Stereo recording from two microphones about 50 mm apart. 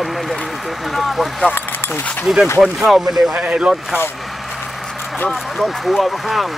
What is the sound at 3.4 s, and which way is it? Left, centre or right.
Speech, centre.